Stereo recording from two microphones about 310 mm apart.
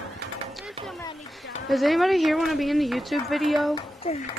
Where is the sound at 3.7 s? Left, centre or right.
Centre.